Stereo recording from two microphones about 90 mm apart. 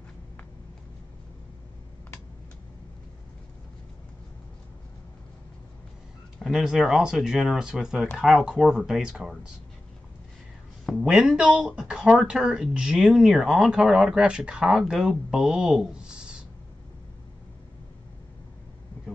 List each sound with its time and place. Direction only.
6.4 s speech: 5° right (ahead or behind)
11.0 s speech: 5° right (ahead or behind)